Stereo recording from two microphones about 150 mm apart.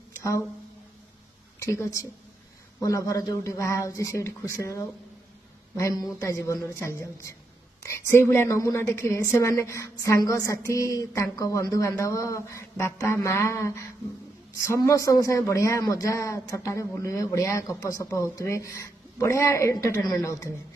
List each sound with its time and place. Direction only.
0.2 s speech: 20° left (ahead or behind)
1.6 s a woman's voice: 20° left (ahead or behind)